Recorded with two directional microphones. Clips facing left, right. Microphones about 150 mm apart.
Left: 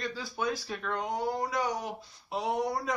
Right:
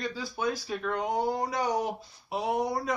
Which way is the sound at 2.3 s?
5° right (ahead or behind).